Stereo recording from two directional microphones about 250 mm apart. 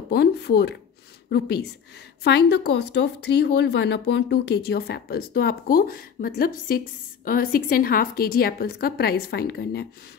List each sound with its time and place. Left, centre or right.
0.1 s speech: left